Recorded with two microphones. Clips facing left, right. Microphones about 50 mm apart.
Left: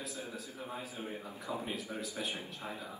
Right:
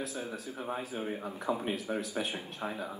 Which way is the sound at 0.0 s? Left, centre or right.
Right.